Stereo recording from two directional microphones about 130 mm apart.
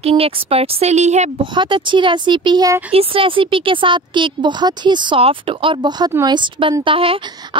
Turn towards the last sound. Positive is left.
turn(degrees=-45)  # may be behind; listen again after turning